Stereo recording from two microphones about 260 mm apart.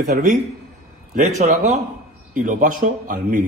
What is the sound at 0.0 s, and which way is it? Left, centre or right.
A man's voice, right.